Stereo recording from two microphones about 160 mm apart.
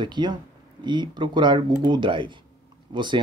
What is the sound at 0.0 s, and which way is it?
Speech, 25° right (ahead or behind).